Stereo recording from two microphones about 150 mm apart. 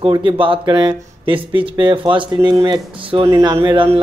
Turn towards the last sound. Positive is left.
turn(degrees=-35)  # may be behind; listen again after turning